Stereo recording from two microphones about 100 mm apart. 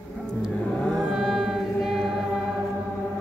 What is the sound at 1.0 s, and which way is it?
Music, centre (ahead or behind).